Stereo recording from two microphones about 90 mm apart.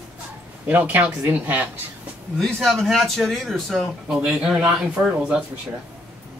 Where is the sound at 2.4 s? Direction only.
Centre (ahead or behind).